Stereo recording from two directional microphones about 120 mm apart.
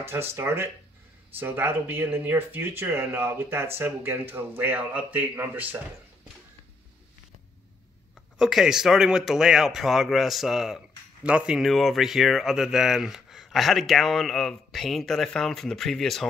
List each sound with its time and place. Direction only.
0.0 s speech: 20° right (ahead or behind)
8.4 s speech: centre (ahead or behind)